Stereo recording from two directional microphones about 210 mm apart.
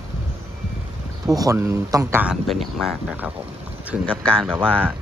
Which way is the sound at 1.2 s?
15° right (ahead or behind).